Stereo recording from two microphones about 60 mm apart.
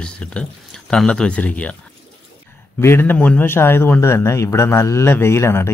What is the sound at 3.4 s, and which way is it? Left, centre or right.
Speech, left.